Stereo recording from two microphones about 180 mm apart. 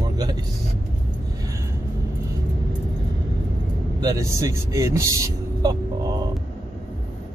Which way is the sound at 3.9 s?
20° right (ahead or behind).